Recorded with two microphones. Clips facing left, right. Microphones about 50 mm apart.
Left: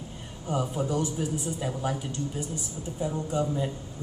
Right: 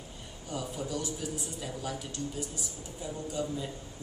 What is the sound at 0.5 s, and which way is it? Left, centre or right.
Speech, left.